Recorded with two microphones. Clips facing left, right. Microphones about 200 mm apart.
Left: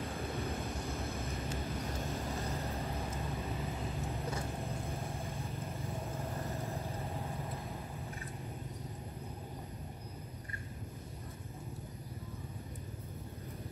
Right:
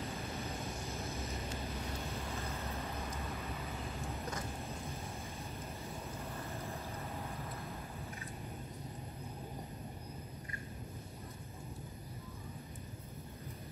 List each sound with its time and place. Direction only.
1.1 s vehicle: 30° left (ahead or behind)
3.2 s vehicle: 15° left (ahead or behind)
6.3 s vehicle: 30° left (ahead or behind)
7.2 s vehicle: 15° left (ahead or behind)